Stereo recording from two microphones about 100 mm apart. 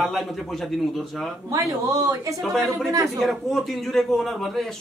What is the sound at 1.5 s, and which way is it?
Speech, 35° right (ahead or behind).